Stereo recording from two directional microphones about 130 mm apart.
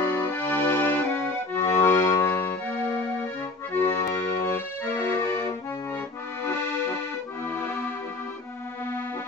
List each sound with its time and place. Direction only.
0.3 s accordion: 15° left (ahead or behind)
3.7 s accordion: 20° left (ahead or behind)
7.5 s music: 20° left (ahead or behind)